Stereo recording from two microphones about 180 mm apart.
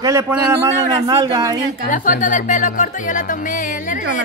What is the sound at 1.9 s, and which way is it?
Speech, 45° left (ahead or behind).